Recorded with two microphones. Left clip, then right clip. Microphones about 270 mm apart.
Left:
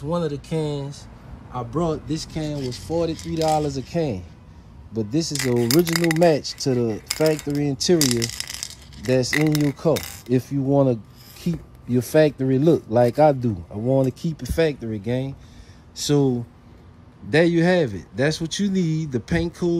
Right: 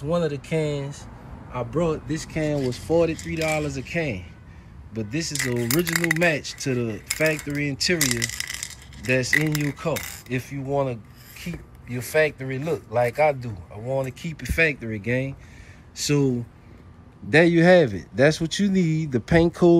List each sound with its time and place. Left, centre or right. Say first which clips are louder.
0.0 s speech: right 1 dB; centre
5.5 s speech: left 8 dB; centre
5.9 s speech: left 3 dB; centre
8.5 s a sound: left 1 dB; centre
9.0 s speech: left 2 dB; centre
9.3 s speech: left 1 dB; left; by 19.8 s centre